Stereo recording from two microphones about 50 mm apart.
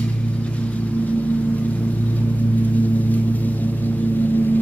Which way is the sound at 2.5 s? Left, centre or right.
Left.